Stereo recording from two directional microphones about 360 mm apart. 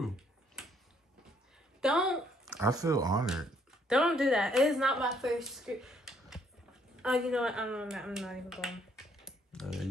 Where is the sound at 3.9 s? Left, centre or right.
Centre.